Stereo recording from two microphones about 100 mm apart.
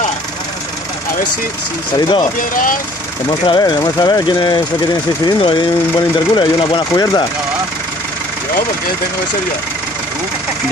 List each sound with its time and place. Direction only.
2.0 s speech: 50° left (ahead or behind)
3.3 s speech: 45° left (ahead or behind)